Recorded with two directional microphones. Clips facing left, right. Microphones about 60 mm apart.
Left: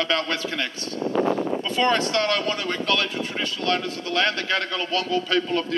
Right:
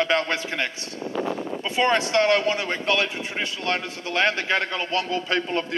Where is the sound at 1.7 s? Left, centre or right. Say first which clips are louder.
Right 2 dB; centre.